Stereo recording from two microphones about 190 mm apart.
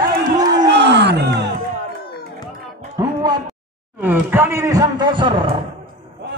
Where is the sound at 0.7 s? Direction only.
65° right (ahead or behind).